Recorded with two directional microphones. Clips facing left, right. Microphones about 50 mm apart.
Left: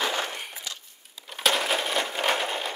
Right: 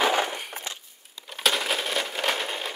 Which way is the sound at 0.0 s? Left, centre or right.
Right.